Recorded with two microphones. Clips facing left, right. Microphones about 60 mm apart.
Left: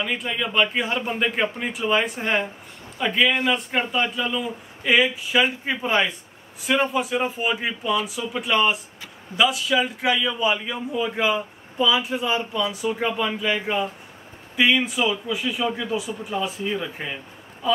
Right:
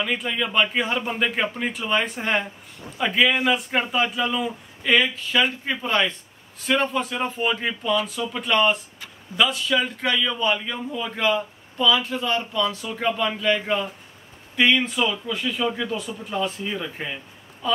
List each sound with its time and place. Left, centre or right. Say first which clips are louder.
0.0 s speech: right 1 dB; centre
4.8 s a man's voice: left 1 dB; centre